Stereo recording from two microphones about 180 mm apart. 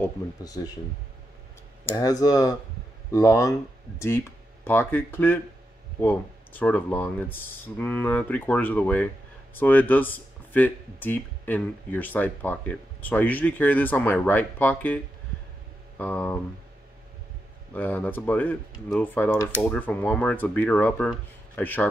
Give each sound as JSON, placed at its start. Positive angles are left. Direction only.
{"t": 0.0, "sound": "speech", "side_deg": 20}
{"t": 1.9, "sound": "speech", "side_deg": 15}
{"t": 16.0, "sound": "speech", "side_deg": 10}
{"t": 17.7, "sound": "speech", "side_deg": 10}